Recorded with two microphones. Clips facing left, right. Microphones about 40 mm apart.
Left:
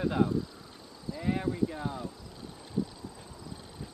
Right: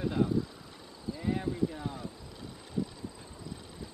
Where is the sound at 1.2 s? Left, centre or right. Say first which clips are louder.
Left 2 dB; centre.